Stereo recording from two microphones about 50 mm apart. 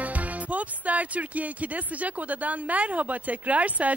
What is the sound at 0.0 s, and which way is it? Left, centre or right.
Speech, right.